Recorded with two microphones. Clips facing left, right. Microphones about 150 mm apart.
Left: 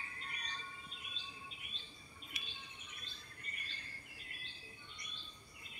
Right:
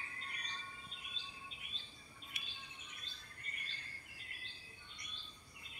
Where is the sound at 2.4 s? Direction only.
50° right (ahead or behind).